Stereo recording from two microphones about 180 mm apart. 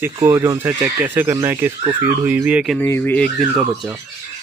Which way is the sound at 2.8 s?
10° left (ahead or behind).